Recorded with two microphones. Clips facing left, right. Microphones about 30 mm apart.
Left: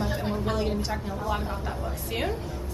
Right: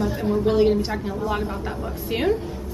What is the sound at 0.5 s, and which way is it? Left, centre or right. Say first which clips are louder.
A woman's voice: right 9 dB; right.